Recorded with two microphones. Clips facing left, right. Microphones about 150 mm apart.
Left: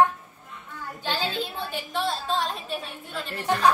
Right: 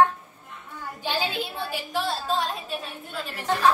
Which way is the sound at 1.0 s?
10° right (ahead or behind).